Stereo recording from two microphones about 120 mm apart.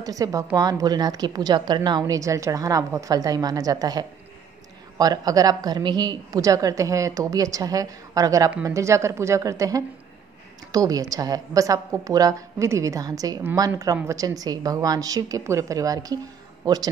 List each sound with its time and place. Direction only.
0.0 s a woman's voice: 30° right (ahead or behind)